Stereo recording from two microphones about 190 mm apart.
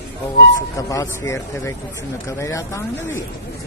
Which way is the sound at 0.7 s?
20° left (ahead or behind).